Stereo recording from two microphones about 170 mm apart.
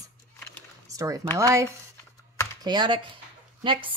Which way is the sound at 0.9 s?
20° right (ahead or behind).